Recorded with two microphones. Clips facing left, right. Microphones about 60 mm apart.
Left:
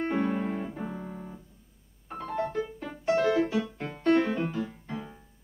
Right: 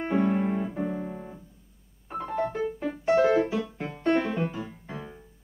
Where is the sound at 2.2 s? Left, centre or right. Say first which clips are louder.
Right 2 dB; centre.